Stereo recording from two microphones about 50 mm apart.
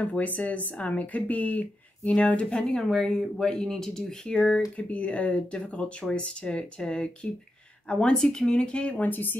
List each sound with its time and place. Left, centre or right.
0.0 s speech: left
2.7 s speech: centre
8.9 s speech: left